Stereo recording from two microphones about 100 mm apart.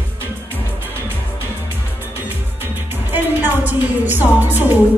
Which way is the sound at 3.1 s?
20° right (ahead or behind).